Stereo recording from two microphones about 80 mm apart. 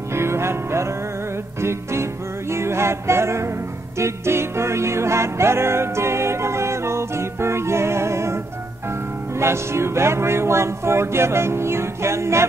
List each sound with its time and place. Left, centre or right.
0.1 s music: right
9.4 s speech: right